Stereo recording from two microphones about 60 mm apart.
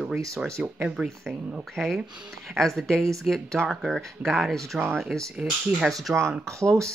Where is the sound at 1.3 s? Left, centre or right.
Centre.